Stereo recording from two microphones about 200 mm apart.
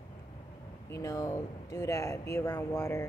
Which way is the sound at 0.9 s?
15° left (ahead or behind).